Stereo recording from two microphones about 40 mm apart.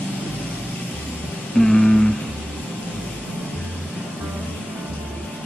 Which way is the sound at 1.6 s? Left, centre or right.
Centre.